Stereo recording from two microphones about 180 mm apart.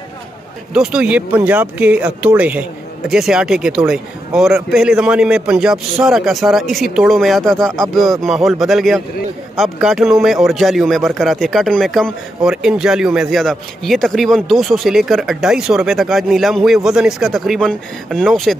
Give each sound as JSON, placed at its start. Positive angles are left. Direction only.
{"t": 0.7, "sound": "speech", "side_deg": -5}